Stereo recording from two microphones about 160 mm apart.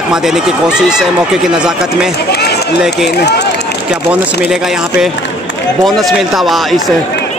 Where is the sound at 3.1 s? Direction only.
90° left.